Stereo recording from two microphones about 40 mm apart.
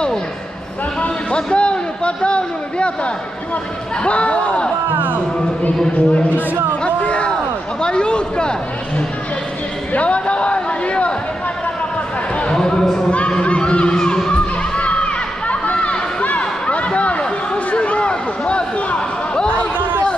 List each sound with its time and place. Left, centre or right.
1.0 s a man's voice: left
4.0 s speech: left
5.9 s speech: left
7.0 s a sound: left
7.8 s a man's voice: left
12.5 s speech: centre
13.4 s speech: left
13.9 s children shouting: centre
14.8 s crowd: left
17.7 s a sound: left